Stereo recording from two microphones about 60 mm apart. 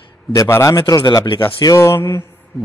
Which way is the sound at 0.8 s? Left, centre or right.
Left.